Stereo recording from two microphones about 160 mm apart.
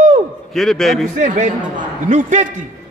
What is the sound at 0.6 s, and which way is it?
Speech, centre (ahead or behind).